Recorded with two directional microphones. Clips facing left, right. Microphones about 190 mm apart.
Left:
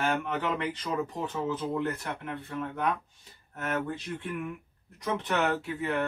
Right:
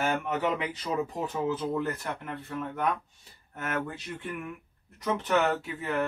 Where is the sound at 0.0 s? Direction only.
5° right (ahead or behind).